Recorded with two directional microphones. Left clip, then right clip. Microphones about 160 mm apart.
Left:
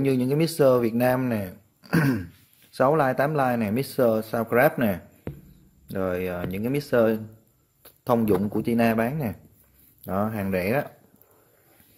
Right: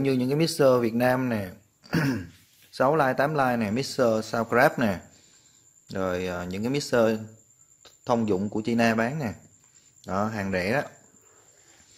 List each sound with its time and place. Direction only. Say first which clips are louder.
0.0 s speech: left 1 dB; 10° left (ahead or behind)
1.8 s throat clearing: left 3 dB; 30° left (ahead or behind)
2.7 s speech: left 1 dB; 15° left (ahead or behind)
7.8 s speech: left 2 dB; 15° left (ahead or behind)